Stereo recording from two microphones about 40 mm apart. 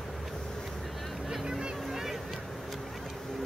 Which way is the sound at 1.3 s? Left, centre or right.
Centre.